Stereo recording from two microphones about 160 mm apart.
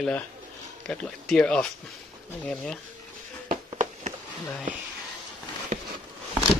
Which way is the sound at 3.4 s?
50° right (ahead or behind).